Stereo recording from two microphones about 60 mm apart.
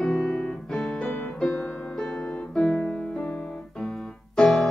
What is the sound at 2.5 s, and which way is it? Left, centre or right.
Music, centre.